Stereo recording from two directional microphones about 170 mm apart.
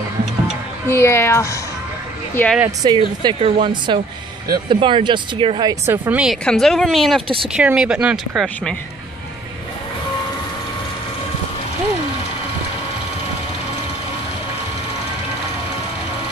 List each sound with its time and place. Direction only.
0.8 s speech: 15° left (ahead or behind)
2.8 s speech: 25° right (ahead or behind)
5.9 s speech: 10° right (ahead or behind)
6.4 s speech: 5° left (ahead or behind)